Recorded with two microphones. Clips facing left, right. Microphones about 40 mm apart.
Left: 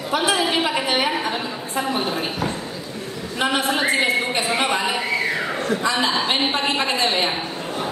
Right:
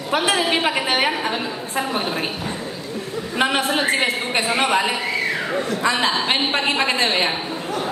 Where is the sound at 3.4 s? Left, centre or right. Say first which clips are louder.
Right 1 dB; right.